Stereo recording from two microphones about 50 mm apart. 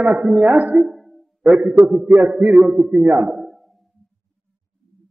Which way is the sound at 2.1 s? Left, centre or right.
Centre.